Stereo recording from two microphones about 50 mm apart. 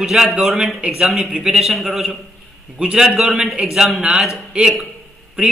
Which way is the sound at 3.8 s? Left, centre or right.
Centre.